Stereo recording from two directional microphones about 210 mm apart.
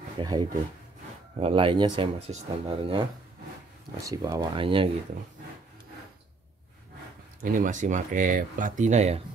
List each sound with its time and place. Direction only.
0.2 s speech: 20° right (ahead or behind)
7.4 s speech: 40° right (ahead or behind)